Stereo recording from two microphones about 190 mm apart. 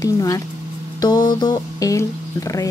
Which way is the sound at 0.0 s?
20° left (ahead or behind).